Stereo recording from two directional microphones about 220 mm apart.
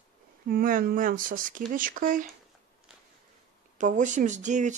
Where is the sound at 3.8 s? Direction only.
35° right (ahead or behind).